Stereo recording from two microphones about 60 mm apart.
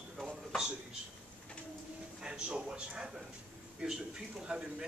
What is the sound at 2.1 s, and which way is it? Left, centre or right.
A man's voice, centre.